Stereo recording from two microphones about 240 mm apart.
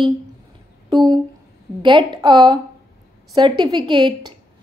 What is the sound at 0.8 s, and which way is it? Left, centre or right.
A woman's voice, centre.